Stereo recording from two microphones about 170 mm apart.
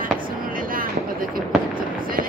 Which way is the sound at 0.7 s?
55° right (ahead or behind).